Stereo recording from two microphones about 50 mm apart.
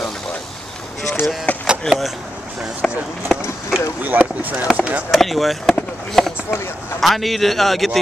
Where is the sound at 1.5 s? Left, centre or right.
Left.